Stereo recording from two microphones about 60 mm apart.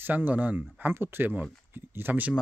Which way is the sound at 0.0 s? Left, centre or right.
Right.